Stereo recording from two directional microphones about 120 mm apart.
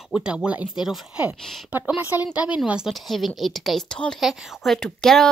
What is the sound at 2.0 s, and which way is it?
A woman's voice, 15° right (ahead or behind).